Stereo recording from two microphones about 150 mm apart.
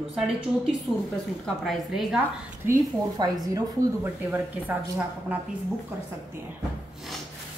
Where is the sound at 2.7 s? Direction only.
25° right (ahead or behind).